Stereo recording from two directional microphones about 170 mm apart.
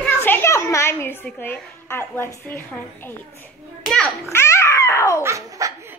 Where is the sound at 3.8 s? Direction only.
5° left (ahead or behind).